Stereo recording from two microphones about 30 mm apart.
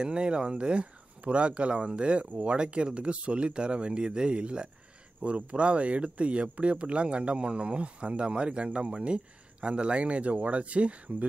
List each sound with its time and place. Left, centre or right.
0.0 s speech: right